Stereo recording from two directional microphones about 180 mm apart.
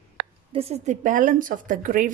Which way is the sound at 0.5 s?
35° right (ahead or behind).